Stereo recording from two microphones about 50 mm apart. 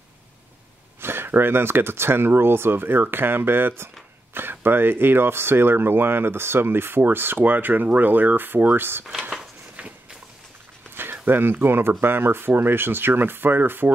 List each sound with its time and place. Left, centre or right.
1.0 s speech: right
11.0 s speech: right